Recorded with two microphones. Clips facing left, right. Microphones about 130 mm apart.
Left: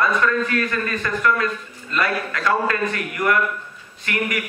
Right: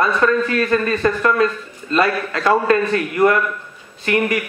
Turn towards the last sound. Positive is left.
turn(degrees=-25)  # may be behind; listen again after turning